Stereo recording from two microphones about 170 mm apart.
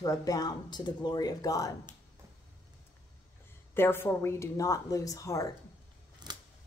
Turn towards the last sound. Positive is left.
turn(degrees=20)  # may be behind; listen again after turning